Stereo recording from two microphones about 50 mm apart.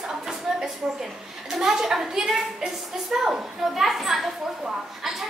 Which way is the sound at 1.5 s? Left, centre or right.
Centre.